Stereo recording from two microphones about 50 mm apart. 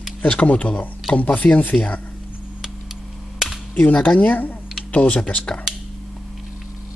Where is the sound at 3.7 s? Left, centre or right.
Left.